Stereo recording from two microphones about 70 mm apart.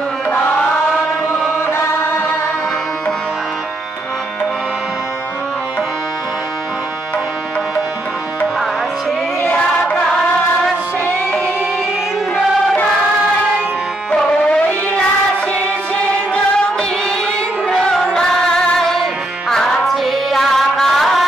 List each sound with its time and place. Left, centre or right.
1.7 s chant: left
9.4 s choir: left
17.6 s music: centre